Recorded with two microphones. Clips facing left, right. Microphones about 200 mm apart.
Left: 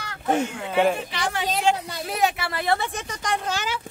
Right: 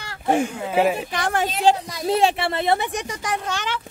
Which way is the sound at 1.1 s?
50° right (ahead or behind).